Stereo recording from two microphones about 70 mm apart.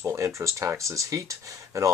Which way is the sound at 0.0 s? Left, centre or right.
Right.